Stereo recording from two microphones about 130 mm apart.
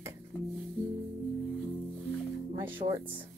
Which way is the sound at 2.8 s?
60° right (ahead or behind).